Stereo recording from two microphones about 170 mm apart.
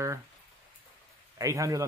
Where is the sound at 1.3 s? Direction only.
20° right (ahead or behind).